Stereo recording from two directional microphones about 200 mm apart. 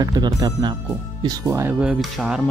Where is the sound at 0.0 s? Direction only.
20° right (ahead or behind); by 2.4 s 5° right (ahead or behind).